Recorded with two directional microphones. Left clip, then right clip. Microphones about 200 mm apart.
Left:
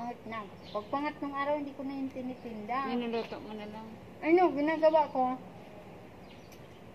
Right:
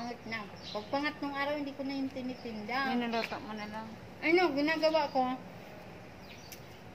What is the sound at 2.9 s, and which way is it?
Speech, 50° right (ahead or behind).